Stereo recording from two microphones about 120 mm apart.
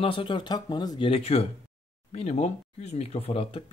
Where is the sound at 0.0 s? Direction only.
45° left (ahead or behind).